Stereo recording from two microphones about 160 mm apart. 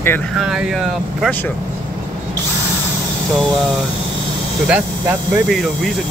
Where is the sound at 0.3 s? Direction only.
5° right (ahead or behind).